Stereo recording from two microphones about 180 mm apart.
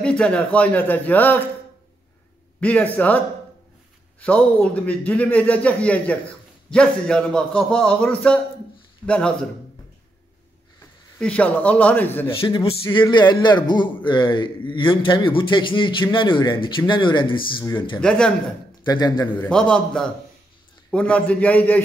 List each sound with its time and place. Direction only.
0.0 s a man's voice: 5° left (ahead or behind)
2.6 s a man's voice: 10° left (ahead or behind)
4.2 s a man's voice: 10° left (ahead or behind)
11.1 s a man's voice: 5° left (ahead or behind)
12.4 s a man's voice: 30° left (ahead or behind)
18.0 s a man's voice: 5° left (ahead or behind)
18.9 s a man's voice: 20° left (ahead or behind)
19.3 s a man's voice: 5° left (ahead or behind)